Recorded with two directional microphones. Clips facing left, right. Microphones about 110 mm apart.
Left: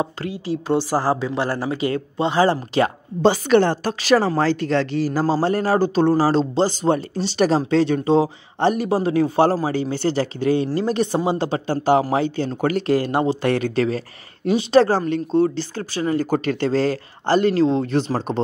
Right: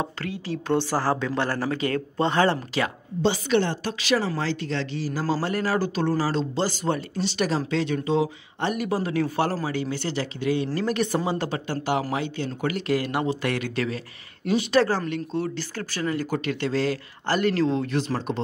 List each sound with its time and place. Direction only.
0.0 s speech: 15° left (ahead or behind)
2.5 s speech: 35° left (ahead or behind)
3.2 s a woman's voice: 50° left (ahead or behind)
5.2 s speech: 30° left (ahead or behind)